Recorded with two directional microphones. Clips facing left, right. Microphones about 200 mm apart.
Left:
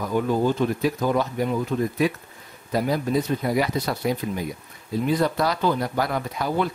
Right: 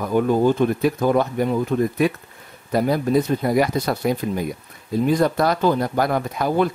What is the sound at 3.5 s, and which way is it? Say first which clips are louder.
Speech: right 4 dB; 50° right (ahead or behind).